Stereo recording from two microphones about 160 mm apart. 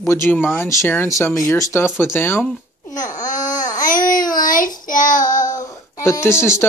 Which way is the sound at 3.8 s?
60° left (ahead or behind).